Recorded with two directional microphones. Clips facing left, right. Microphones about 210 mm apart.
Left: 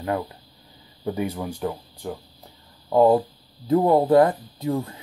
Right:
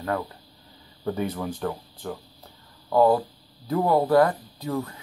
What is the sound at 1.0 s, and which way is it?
Speech, 10° left (ahead or behind).